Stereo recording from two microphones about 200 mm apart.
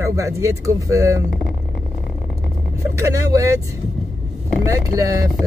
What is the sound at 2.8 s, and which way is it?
Speech, 15° right (ahead or behind).